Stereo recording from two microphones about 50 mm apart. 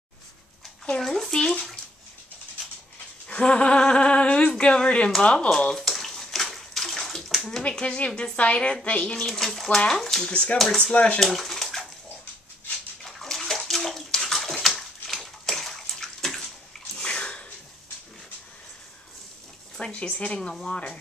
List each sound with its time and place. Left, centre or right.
1.0 s a sound: centre
3.3 s a woman's voice: left
5.5 s bathtub: centre
7.8 s a woman's voice: left
9.1 s a woman's voice: centre; by 11.1 s left
11.1 s pigeon: centre
13.0 s bathtub: centre
16.9 s bathtub: centre
19.8 s speech: centre